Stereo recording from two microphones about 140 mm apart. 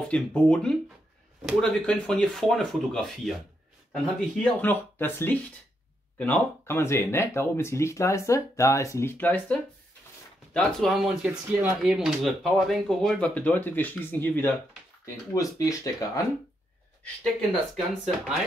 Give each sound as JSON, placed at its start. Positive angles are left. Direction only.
{"t": 0.1, "sound": "speech", "side_deg": 10}
{"t": 15.3, "sound": "speech", "side_deg": 25}
{"t": 17.7, "sound": "speech", "side_deg": 0}